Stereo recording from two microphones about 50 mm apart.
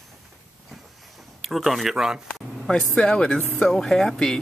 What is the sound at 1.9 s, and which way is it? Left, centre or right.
Speech, centre.